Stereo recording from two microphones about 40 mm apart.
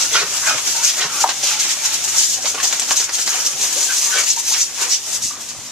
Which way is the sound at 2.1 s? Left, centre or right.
Centre.